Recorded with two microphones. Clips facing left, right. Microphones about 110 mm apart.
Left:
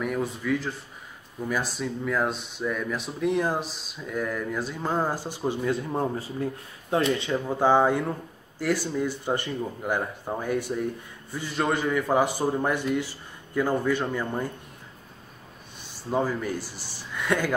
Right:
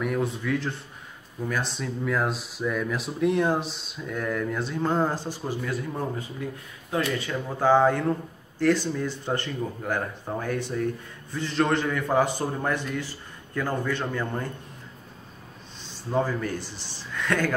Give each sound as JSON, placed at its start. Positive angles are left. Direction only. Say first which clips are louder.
{"t": 0.0, "sound": "speech", "louder": "right 1 dB", "side_deg": 0}
{"t": 15.9, "sound": "speech", "louder": "even", "side_deg": 10}